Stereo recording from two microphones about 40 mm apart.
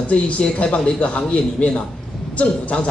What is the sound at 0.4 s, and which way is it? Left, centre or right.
A man's voice, left.